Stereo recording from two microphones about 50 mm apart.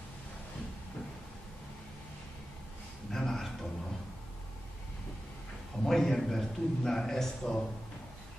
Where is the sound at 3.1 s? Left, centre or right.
Centre.